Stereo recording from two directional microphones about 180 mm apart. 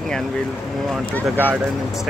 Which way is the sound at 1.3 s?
10° right (ahead or behind).